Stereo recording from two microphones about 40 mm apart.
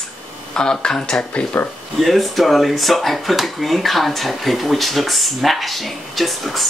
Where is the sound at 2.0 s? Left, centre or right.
Centre.